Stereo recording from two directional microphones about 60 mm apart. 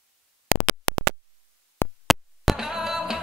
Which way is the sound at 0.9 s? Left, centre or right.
Left.